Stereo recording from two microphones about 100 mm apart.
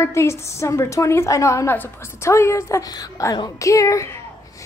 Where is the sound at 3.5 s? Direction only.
30° left (ahead or behind).